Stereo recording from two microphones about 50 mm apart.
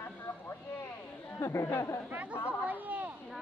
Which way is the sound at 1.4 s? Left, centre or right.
Left.